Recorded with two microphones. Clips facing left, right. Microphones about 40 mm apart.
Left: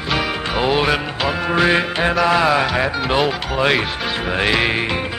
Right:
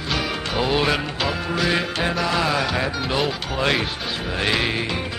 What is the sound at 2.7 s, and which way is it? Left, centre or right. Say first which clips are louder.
Music: left 4 dB; centre.